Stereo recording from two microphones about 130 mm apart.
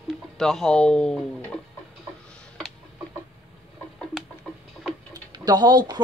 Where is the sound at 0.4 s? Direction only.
5° left (ahead or behind).